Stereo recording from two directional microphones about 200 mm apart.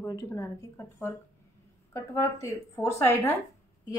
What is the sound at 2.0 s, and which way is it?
A woman's voice, 15° left (ahead or behind).